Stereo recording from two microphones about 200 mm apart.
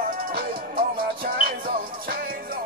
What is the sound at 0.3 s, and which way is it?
Music, 50° right (ahead or behind).